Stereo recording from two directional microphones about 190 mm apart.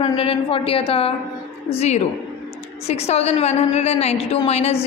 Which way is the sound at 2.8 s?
35° left (ahead or behind).